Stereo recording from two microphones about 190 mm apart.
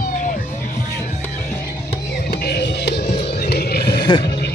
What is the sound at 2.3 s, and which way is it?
Music, 55° left (ahead or behind).